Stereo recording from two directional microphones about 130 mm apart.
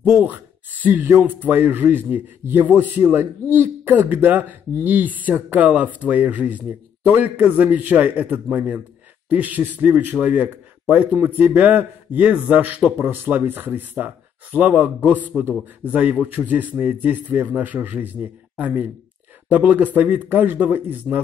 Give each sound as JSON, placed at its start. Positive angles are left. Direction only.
{"t": 0.0, "sound": "speech", "side_deg": -10}